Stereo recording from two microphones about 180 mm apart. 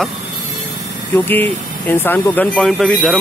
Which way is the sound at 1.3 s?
10° left (ahead or behind).